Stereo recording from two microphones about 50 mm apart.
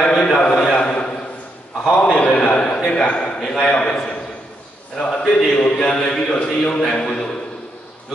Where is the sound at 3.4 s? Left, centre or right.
Centre.